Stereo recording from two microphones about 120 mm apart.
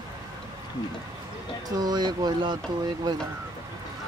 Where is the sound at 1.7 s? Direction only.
35° right (ahead or behind).